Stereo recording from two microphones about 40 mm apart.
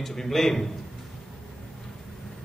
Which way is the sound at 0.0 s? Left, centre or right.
Centre.